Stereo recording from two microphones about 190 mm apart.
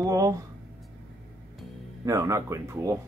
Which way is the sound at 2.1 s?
15° right (ahead or behind).